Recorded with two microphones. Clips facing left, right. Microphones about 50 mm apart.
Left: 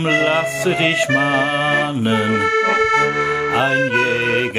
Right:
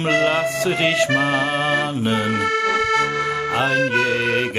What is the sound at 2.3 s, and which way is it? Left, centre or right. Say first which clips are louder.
Music: left 3 dB; left.